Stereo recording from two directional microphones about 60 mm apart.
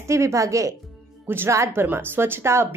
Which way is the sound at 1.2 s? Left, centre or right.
Right.